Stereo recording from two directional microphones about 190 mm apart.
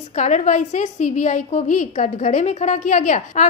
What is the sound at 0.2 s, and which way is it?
A woman's voice, 40° left (ahead or behind).